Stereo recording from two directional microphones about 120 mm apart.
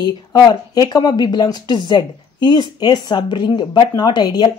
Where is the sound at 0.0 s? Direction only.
30° left (ahead or behind).